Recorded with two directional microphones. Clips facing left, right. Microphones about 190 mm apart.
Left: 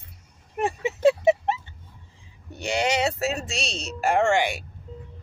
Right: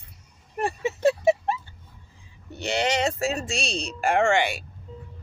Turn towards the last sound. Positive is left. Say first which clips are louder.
# even
turn(degrees=10)  # may be behind; listen again after turning